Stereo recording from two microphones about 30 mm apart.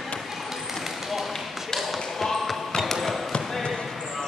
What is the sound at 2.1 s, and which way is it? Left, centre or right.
Basketball bounce, centre.